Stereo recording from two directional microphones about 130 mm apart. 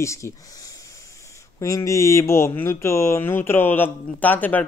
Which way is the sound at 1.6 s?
25° left (ahead or behind).